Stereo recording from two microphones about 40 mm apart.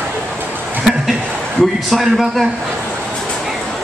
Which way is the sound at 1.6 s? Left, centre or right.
Centre.